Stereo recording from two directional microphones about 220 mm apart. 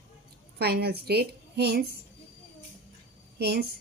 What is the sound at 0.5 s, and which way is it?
A woman's voice, 45° right (ahead or behind).